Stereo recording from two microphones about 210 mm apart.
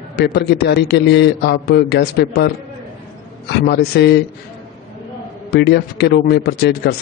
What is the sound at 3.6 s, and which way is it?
Speech, 50° left (ahead or behind).